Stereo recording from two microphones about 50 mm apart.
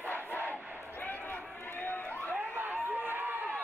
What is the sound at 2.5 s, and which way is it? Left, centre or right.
Crowd, right.